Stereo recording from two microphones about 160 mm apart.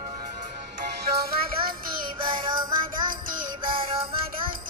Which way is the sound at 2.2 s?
30° right (ahead or behind).